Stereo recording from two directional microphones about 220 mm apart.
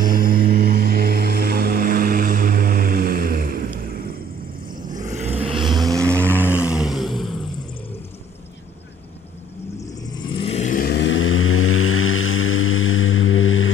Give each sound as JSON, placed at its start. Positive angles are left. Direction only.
{"t": 0.0, "sound": "music", "side_deg": -40}
{"t": 4.9, "sound": "vehicle", "side_deg": -30}
{"t": 10.2, "sound": "vehicle", "side_deg": 25}